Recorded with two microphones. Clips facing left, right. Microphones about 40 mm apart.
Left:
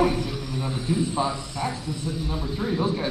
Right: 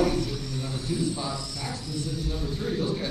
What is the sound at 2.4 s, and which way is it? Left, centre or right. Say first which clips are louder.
Speech: left 4 dB; centre.